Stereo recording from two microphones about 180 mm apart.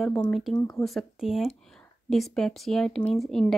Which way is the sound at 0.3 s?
Centre (ahead or behind).